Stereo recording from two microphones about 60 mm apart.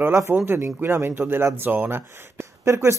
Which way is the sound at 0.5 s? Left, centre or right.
Right.